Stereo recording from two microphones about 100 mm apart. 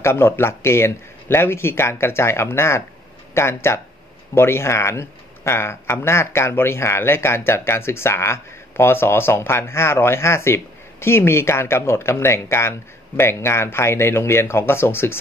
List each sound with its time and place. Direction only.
0.0 s speech: 25° left (ahead or behind)